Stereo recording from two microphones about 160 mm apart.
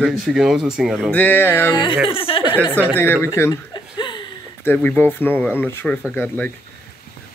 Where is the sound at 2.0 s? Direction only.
35° left (ahead or behind).